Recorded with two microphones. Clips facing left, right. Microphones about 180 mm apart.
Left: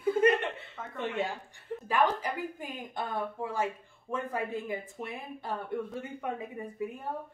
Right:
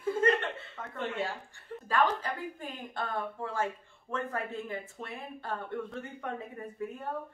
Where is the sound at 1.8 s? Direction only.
15° left (ahead or behind).